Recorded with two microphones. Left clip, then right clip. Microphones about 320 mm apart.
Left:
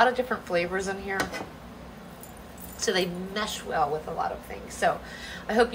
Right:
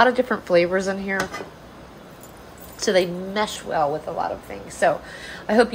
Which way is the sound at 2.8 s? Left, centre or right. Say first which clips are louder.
Right 7 dB; right.